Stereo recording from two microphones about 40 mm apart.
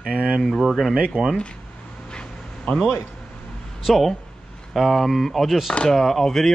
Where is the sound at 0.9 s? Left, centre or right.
Right.